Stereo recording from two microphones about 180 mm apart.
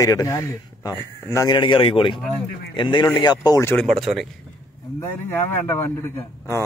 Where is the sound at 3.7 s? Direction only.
Centre (ahead or behind).